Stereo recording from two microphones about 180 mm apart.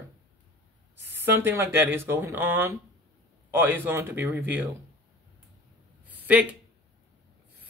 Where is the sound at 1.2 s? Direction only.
10° right (ahead or behind).